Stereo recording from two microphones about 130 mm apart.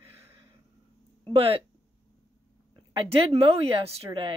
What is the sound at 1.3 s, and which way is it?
Speech, 45° right (ahead or behind).